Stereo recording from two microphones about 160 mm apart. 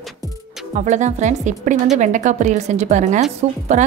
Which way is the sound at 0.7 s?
50° right (ahead or behind).